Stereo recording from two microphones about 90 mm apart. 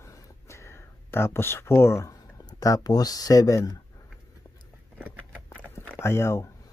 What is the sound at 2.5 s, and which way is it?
Speech, 40° left (ahead or behind).